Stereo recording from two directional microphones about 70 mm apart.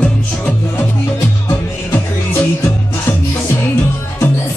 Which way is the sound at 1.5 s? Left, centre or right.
Left.